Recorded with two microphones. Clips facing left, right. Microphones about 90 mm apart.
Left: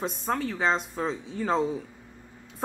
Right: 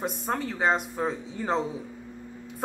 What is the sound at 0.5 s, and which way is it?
A woman's voice, 10° right (ahead or behind).